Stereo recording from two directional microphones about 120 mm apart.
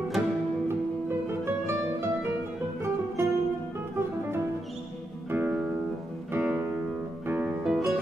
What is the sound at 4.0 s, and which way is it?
Music, 20° right (ahead or behind).